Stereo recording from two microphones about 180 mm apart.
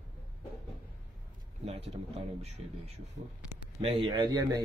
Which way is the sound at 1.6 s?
35° right (ahead or behind).